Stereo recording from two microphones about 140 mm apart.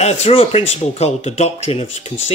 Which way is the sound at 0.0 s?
45° left (ahead or behind).